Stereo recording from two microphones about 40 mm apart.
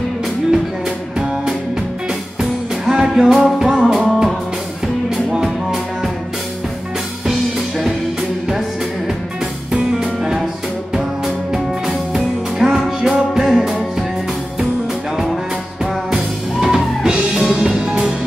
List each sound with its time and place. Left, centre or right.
0.5 s music: centre
2.8 s music: centre
5.3 s music: centre
7.2 s music: centre
15.8 s music: centre